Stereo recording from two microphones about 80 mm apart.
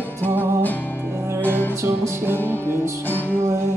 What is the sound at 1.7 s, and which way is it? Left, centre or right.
Music, right.